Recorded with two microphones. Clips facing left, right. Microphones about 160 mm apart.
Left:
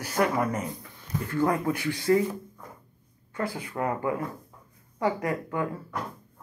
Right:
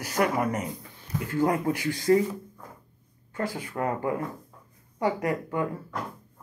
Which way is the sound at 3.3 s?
35° right (ahead or behind).